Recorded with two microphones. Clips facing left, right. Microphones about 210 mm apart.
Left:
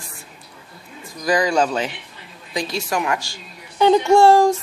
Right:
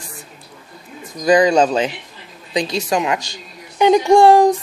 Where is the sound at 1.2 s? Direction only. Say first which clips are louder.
Right 6 dB; 20° right (ahead or behind).